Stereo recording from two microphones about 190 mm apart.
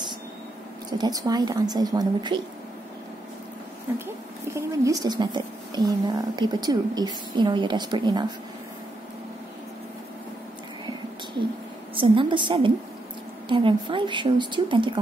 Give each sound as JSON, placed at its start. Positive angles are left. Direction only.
{"t": 0.9, "sound": "a woman's voice", "side_deg": -20}
{"t": 3.9, "sound": "a woman's voice", "side_deg": -10}
{"t": 11.9, "sound": "a woman's voice", "side_deg": -25}